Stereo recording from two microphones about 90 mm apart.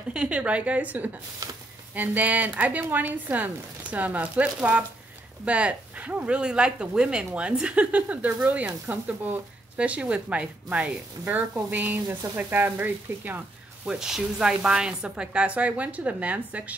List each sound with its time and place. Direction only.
0.1 s speech: 10° right (ahead or behind)
13.8 s speech: 5° right (ahead or behind)